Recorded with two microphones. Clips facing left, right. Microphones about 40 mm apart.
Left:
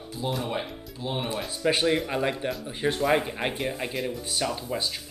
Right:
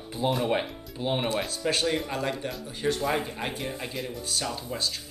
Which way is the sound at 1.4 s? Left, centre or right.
Centre.